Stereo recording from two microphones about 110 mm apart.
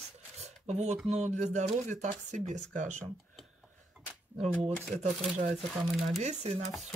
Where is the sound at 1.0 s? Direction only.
85° right.